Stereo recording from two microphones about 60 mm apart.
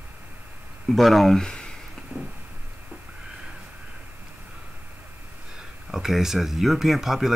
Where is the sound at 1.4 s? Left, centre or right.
Centre.